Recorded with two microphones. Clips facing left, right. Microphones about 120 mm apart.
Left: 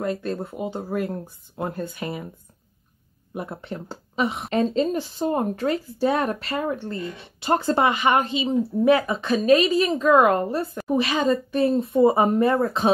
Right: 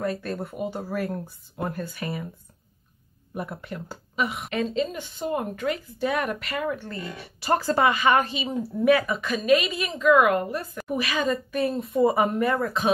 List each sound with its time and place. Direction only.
0.0 s speech: 20° left (ahead or behind)
3.4 s speech: 30° left (ahead or behind)